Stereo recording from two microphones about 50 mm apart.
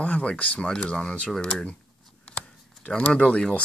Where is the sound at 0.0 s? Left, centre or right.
Left.